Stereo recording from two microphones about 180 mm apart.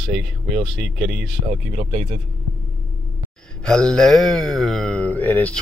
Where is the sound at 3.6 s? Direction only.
5° left (ahead or behind).